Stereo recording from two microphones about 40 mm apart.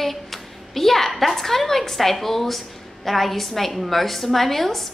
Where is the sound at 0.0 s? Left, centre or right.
Centre.